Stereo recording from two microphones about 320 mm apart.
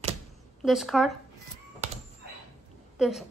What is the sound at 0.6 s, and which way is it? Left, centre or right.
Speech, centre.